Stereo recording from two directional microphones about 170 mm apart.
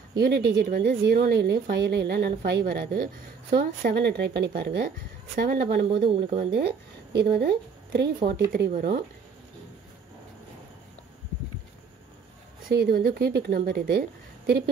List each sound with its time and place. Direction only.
0.6 s speech: 70° right (ahead or behind); by 4.5 s 90° right
4.5 s speech: 75° right (ahead or behind)
4.8 s speech: 60° right (ahead or behind)
6.0 s speech: 35° right (ahead or behind)
6.5 s speech: 75° right (ahead or behind)
8.5 s speech: 60° right (ahead or behind)
12.6 s speech: 65° right (ahead or behind)